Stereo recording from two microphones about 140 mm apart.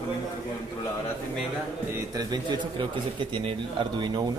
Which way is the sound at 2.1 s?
30° right (ahead or behind).